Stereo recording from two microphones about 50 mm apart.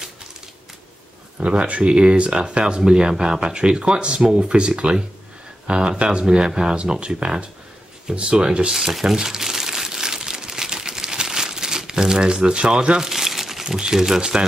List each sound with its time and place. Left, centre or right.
1.4 s speech: right
8.9 s crumpling: centre